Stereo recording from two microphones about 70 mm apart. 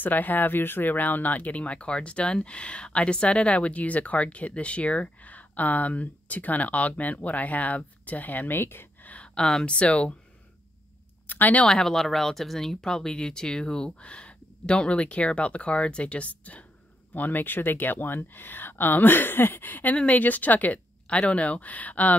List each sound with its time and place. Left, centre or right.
0.0 s speech: left
9.1 s speech: centre
11.2 s a sound: left
11.6 s speech: centre